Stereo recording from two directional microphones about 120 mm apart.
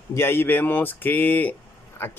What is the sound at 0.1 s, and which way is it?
Speech, 20° left (ahead or behind).